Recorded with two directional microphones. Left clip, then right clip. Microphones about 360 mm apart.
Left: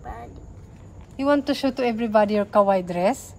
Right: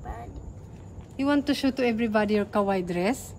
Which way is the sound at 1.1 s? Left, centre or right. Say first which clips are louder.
Left 4 dB; centre.